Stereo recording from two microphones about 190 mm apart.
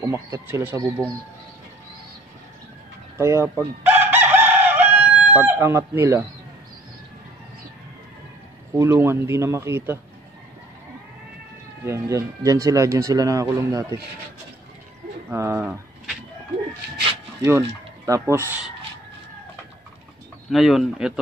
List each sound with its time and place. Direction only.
0.0 s speech: 15° right (ahead or behind)
3.2 s chicken: 15° right (ahead or behind)
8.7 s speech: 15° right (ahead or behind)
11.8 s speech: 15° right (ahead or behind)
15.2 s speech: 15° right (ahead or behind)
17.4 s speech: 15° right (ahead or behind)
20.4 s speech: centre (ahead or behind)